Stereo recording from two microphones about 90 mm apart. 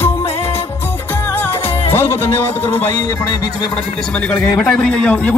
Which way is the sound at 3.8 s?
15° left (ahead or behind).